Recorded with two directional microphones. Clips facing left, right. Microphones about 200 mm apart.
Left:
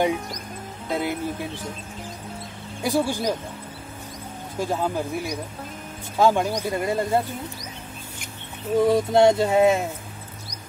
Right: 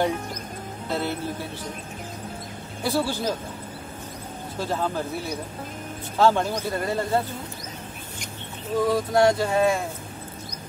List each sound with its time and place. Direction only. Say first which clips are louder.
0.8 s speech: left 2 dB; 15° left (ahead or behind)
2.8 s speech: left 2 dB; 15° left (ahead or behind)
4.6 s speech: left 2 dB; 15° left (ahead or behind)
8.7 s speech: left 3 dB; 25° left (ahead or behind)